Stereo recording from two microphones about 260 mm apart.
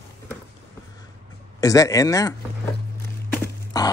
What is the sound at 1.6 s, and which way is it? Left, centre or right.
Speech, centre.